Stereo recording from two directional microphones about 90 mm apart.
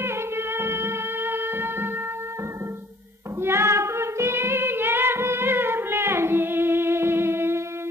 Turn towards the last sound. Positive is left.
turn(degrees=-25)  # may be behind; listen again after turning